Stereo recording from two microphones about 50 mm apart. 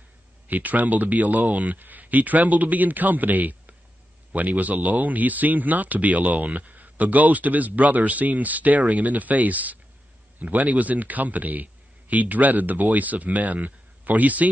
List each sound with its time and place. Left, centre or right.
0.5 s a man's voice: right